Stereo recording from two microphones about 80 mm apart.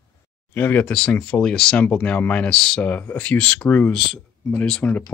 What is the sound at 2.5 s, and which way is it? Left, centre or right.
Speech, centre.